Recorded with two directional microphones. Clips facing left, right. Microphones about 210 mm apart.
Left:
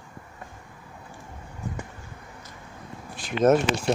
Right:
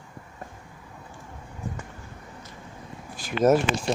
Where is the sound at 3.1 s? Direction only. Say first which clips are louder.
Even; centre (ahead or behind).